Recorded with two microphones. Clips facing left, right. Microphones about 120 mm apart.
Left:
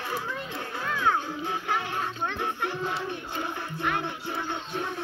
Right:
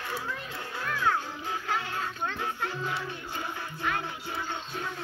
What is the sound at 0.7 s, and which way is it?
Music, 20° left (ahead or behind).